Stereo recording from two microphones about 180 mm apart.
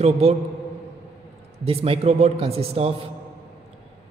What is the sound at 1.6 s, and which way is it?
Speech, 30° right (ahead or behind).